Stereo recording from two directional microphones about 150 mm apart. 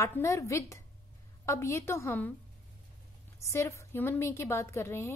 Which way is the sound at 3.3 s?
20° left (ahead or behind).